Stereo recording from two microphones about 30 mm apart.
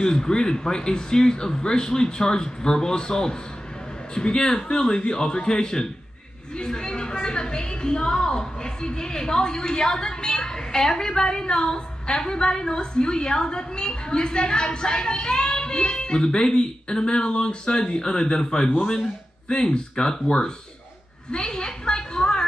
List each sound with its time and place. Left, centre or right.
0.0 s a woman's voice: left